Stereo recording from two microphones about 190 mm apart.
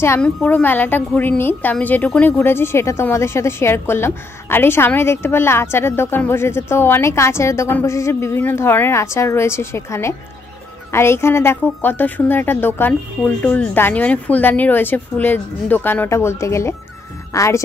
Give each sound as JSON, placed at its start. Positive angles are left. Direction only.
{"t": 0.0, "sound": "a woman's voice", "side_deg": 15}